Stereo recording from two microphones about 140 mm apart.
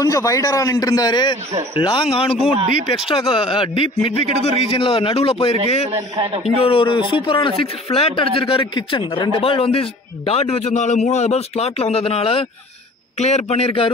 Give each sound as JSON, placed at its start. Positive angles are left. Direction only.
{"t": 0.0, "sound": "a man's voice", "side_deg": 25}